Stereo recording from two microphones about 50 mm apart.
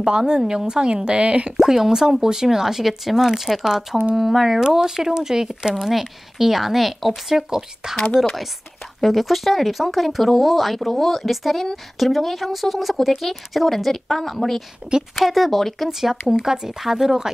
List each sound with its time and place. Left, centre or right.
0.0 s speech: centre
1.6 s speech: centre
9.0 s speech: centre
14.8 s a woman's voice: right
15.1 s speech: centre